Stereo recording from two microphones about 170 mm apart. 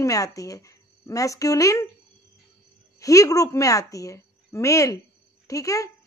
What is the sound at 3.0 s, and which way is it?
A woman's voice, 20° left (ahead or behind).